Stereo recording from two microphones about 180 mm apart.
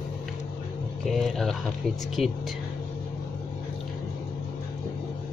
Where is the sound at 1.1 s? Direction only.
Centre (ahead or behind).